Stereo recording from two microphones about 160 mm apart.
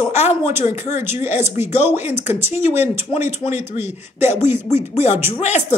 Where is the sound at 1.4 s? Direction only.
15° right (ahead or behind).